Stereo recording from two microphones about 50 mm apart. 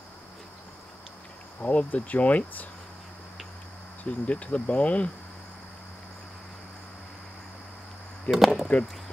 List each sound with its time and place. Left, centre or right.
1.6 s speech: left
4.0 s speech: left
8.3 s speech: left